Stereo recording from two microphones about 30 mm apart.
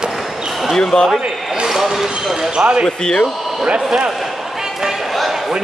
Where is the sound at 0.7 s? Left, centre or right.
Left.